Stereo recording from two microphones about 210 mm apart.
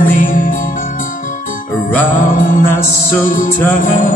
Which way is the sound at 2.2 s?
40° left (ahead or behind).